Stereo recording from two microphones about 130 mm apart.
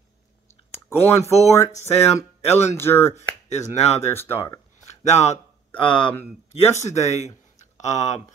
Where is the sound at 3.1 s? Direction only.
60° left (ahead or behind).